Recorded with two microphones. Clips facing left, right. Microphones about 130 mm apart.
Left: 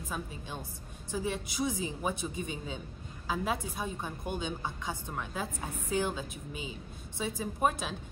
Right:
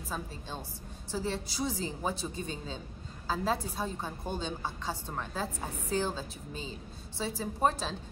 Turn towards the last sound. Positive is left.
turn(degrees=10)  # may be behind; listen again after turning